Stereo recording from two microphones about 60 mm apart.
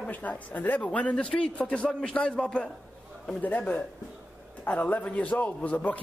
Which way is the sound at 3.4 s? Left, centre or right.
Left.